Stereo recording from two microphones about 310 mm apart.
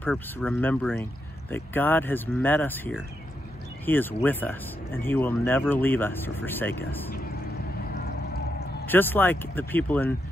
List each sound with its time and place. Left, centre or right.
0.0 s speech: centre
7.9 s a sound: left
8.8 s speech: centre